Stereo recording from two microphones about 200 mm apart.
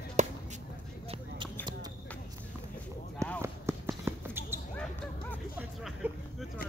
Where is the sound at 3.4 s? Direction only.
15° right (ahead or behind).